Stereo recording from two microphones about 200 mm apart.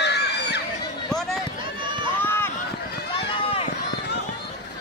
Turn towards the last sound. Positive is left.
turn(degrees=30)  # may be behind; listen again after turning